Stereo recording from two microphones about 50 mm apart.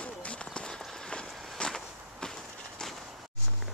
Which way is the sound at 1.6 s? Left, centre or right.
Centre.